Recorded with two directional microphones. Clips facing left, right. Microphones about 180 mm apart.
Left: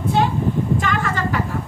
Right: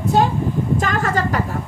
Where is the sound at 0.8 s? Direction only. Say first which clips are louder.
Right 2 dB; 40° right (ahead or behind).